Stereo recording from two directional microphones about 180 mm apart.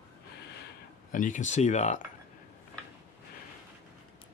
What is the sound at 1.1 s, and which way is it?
Speech, 45° left (ahead or behind).